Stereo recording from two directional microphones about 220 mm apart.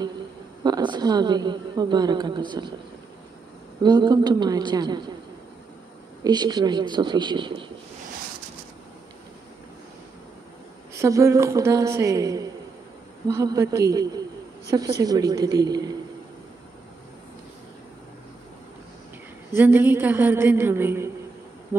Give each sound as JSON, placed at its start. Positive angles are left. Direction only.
{"t": 0.7, "sound": "a woman's voice", "side_deg": -20}
{"t": 3.8, "sound": "a woman's voice", "side_deg": -20}
{"t": 6.2, "sound": "a woman's voice", "side_deg": -20}
{"t": 11.0, "sound": "a man's voice", "side_deg": -15}
{"t": 19.5, "sound": "a man's voice", "side_deg": -10}